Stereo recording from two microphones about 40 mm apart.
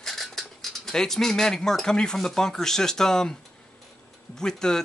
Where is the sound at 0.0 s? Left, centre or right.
Centre.